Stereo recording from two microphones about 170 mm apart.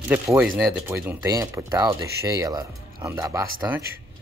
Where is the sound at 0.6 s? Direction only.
15° right (ahead or behind).